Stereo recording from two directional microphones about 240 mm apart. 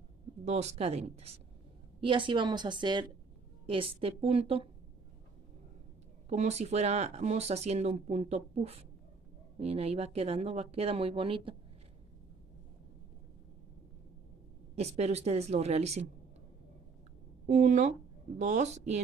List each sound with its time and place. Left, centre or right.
0.5 s speech: right
6.2 s speech: right
14.8 s speech: right
17.5 s speech: right